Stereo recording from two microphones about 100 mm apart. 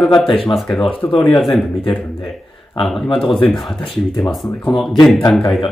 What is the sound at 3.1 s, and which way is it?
Speech, 60° left (ahead or behind).